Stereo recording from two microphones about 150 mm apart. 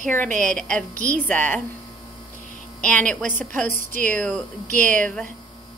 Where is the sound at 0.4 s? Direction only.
5° left (ahead or behind).